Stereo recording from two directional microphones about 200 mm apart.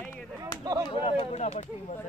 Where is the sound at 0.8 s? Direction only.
25° left (ahead or behind).